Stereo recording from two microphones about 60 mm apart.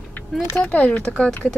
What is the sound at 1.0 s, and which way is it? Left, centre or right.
Speech, centre.